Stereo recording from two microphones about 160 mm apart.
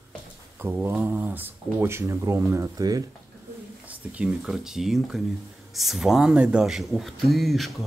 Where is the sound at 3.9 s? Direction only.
5° right (ahead or behind).